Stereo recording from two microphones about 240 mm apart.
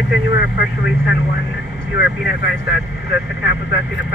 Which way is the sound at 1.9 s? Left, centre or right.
Centre.